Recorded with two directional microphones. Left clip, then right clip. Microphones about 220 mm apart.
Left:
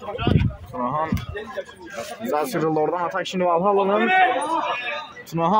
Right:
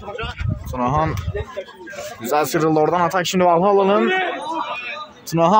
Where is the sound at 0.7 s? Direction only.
40° right (ahead or behind).